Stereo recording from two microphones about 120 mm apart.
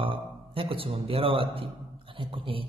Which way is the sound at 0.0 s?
50° right (ahead or behind).